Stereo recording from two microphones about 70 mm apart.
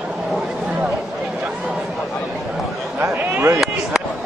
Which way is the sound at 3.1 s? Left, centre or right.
Right.